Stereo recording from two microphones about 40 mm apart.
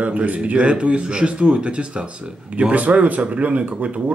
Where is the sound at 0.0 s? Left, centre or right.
Right.